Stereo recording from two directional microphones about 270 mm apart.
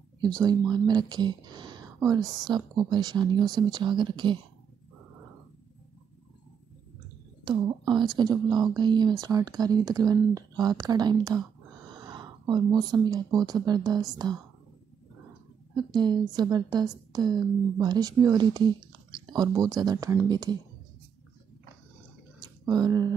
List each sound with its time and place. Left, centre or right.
0.4 s a woman's voice: centre
7.4 s a woman's voice: centre
15.7 s a woman's voice: centre
22.4 s a sound: centre